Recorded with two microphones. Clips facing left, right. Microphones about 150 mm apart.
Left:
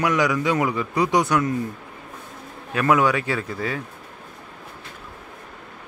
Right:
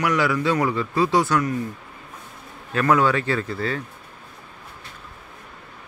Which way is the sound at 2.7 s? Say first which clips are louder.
Even; 15° left (ahead or behind).